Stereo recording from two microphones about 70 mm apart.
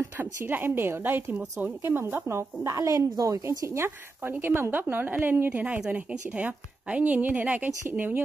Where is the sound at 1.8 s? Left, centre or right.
Right.